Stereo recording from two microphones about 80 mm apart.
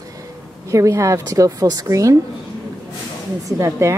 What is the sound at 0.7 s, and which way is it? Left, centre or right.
Speech, right.